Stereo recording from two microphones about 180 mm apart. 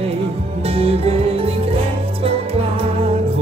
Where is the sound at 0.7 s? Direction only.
35° right (ahead or behind).